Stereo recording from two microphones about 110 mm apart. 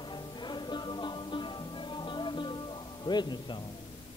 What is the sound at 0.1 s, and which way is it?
Music, 45° left (ahead or behind).